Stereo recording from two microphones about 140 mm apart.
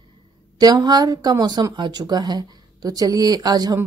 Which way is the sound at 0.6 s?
25° right (ahead or behind).